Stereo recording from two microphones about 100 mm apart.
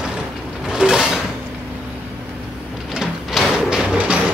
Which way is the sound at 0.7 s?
5° right (ahead or behind).